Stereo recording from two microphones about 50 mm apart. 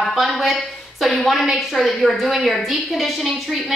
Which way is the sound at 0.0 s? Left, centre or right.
Centre.